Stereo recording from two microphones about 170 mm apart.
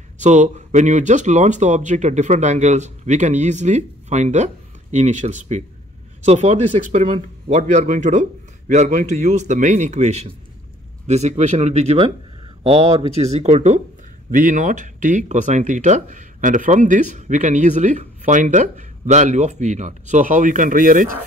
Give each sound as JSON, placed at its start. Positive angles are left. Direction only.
{"t": 0.2, "sound": "speech", "side_deg": -45}